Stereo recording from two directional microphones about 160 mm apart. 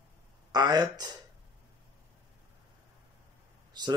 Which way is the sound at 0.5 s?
25° right (ahead or behind).